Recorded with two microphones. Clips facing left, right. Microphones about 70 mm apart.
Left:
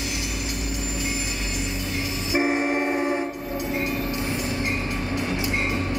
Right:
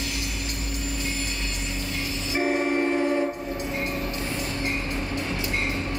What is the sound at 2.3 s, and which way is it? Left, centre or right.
Train, left.